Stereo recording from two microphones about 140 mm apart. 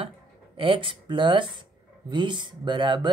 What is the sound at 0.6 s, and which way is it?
Speech, 40° right (ahead or behind).